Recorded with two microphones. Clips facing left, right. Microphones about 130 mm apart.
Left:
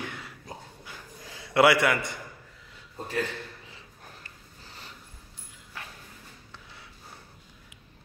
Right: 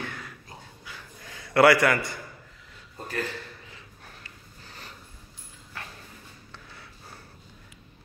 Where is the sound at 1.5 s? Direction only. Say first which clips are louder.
Right 2 dB; 20° left (ahead or behind).